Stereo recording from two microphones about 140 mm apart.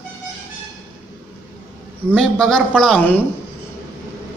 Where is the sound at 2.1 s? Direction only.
5° left (ahead or behind).